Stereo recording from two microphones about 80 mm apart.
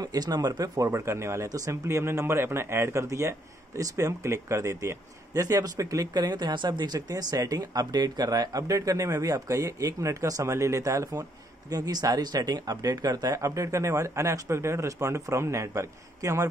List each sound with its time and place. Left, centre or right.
0.0 s speech: right
0.8 s speech: right
7.1 s speech: right